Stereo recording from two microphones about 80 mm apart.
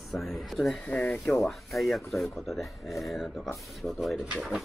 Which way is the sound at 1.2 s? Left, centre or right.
Centre.